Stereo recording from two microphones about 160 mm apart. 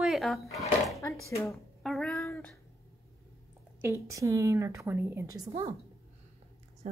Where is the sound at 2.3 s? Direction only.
10° left (ahead or behind).